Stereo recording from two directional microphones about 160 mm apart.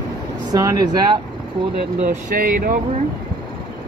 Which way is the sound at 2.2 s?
60° right (ahead or behind).